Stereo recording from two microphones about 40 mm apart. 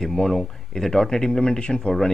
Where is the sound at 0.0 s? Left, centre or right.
Centre.